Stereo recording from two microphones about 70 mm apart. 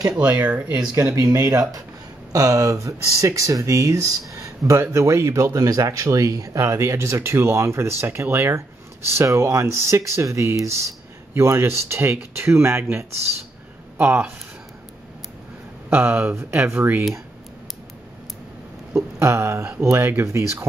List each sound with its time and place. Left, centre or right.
0.4 s speech: centre
1.1 s speech: right
15.9 s speech: right
19.1 s speech: right